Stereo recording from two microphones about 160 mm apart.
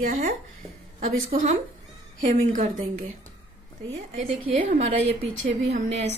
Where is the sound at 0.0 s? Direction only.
55° right (ahead or behind).